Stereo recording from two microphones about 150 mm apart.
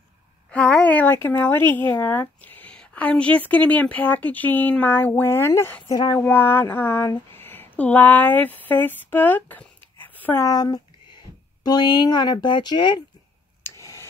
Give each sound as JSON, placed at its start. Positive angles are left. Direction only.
{"t": 0.5, "sound": "speech", "side_deg": 10}
{"t": 10.4, "sound": "speech", "side_deg": 25}
{"t": 13.7, "sound": "a sound", "side_deg": 20}